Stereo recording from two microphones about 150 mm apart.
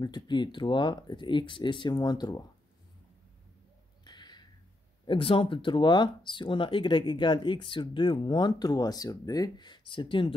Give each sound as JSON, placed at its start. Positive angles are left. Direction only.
{"t": 0.0, "sound": "speech", "side_deg": 30}
{"t": 4.0, "sound": "a sound", "side_deg": 30}
{"t": 5.0, "sound": "speech", "side_deg": 35}